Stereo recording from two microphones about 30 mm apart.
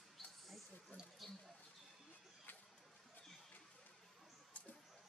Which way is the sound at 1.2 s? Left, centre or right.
Centre.